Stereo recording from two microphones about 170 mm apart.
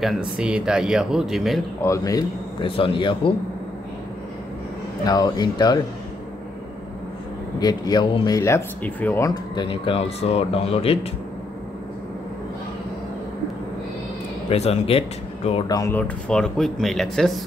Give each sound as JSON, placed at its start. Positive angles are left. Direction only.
{"t": 0.0, "sound": "speech", "side_deg": -5}
{"t": 1.8, "sound": "a man's voice", "side_deg": 20}
{"t": 2.6, "sound": "speech", "side_deg": 30}
{"t": 5.0, "sound": "a man's voice", "side_deg": 20}
{"t": 7.6, "sound": "a man's voice", "side_deg": 25}
{"t": 8.4, "sound": "speech", "side_deg": 15}
{"t": 9.2, "sound": "speech", "side_deg": 20}
{"t": 9.7, "sound": "speech", "side_deg": 35}
{"t": 14.5, "sound": "speech", "side_deg": 35}
{"t": 15.7, "sound": "a man's voice", "side_deg": 20}
{"t": 16.0, "sound": "speech", "side_deg": 5}